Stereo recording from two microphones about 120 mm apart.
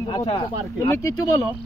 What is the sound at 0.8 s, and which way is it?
Speech, 25° left (ahead or behind).